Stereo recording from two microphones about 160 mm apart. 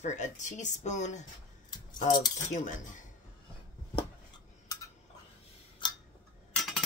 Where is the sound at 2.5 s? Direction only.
50° left (ahead or behind).